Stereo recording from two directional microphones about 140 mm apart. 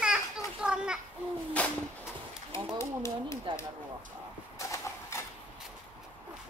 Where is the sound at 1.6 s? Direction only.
10° left (ahead or behind).